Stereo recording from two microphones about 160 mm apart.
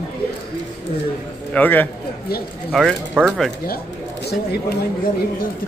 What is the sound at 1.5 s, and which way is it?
Speech, 10° left (ahead or behind).